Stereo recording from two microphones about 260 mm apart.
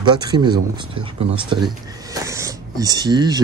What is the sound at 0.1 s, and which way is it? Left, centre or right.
Speech, centre.